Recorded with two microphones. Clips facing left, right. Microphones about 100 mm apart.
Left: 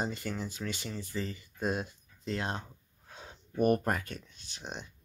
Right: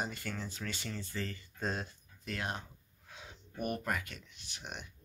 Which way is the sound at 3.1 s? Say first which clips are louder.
Left 3 dB; 40° left (ahead or behind).